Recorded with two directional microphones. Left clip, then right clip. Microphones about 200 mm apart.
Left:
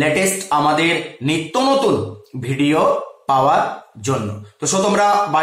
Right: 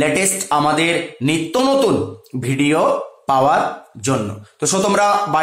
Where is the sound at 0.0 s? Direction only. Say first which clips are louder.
Even; 45° right (ahead or behind).